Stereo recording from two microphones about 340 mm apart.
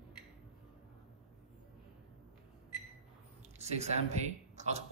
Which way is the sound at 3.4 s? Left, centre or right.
Centre.